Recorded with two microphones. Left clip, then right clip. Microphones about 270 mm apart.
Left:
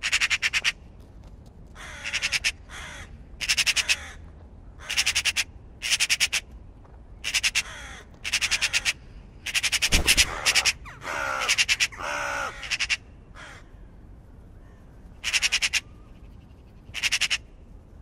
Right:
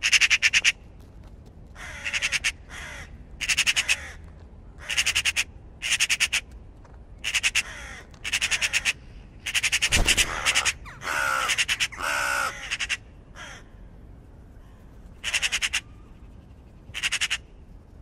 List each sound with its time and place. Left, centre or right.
0.0 s a sound: left
2.0 s crow: right
2.7 s crow: left
3.3 s crow: right
7.6 s crow: centre
8.2 s crow: right
9.4 s frog: right
11.1 s crow: right
15.2 s frog: right
16.9 s frog: right